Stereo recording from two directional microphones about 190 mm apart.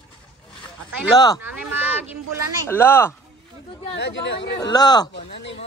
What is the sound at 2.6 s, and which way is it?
Speech, 10° left (ahead or behind).